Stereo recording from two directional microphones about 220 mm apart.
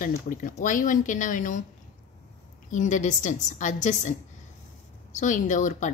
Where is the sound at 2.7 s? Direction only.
35° left (ahead or behind).